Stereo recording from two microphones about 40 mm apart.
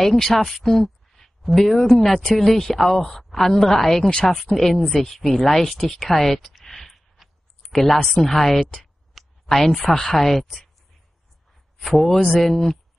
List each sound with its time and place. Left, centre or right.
0.0 s a woman's voice: centre
4.1 s speech: left
4.6 s a woman's voice: centre
7.2 s a sound: centre
8.2 s speech: centre
9.2 s a sound: centre
9.5 s a woman's voice: centre
10.1 s speech: centre
11.8 s speech: centre